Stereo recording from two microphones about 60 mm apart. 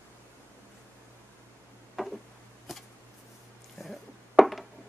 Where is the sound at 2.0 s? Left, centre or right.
Centre.